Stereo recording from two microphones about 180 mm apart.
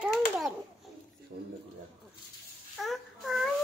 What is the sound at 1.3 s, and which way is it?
Speech, 60° right (ahead or behind).